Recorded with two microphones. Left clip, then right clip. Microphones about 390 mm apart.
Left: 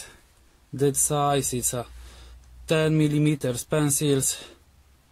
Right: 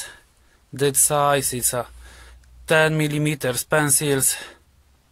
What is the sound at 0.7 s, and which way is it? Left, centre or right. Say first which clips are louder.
Speech: right 4 dB; right.